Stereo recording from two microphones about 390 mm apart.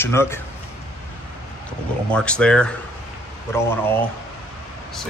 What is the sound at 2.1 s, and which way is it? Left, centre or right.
Speech, centre.